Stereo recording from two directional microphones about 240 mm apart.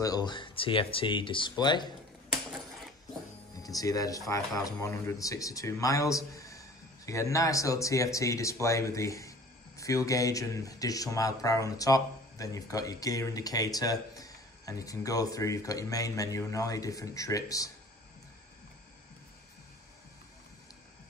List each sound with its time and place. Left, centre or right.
0.0 s speech: centre
3.6 s speech: centre